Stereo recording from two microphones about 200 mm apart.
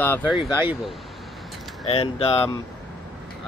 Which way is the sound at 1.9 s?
30° left (ahead or behind).